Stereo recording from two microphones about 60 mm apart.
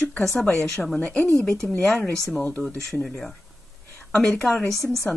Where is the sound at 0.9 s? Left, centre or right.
Centre.